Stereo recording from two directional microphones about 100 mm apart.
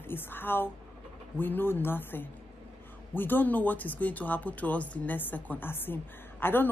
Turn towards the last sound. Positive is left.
turn(degrees=20)  # may be behind; listen again after turning